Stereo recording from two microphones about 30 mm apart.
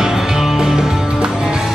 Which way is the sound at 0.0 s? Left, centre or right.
Centre.